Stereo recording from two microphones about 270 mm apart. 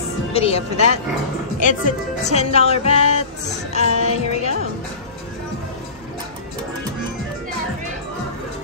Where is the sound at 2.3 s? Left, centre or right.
Left.